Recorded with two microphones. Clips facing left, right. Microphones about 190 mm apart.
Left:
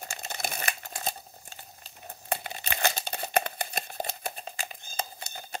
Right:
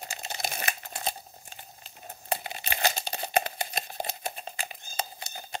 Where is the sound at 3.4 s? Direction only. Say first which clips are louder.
Even; 55° left (ahead or behind).